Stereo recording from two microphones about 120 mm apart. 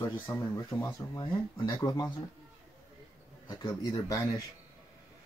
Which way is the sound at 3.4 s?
35° left (ahead or behind).